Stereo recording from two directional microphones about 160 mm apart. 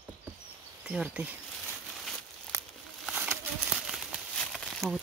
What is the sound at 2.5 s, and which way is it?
Crumpling, 20° right (ahead or behind).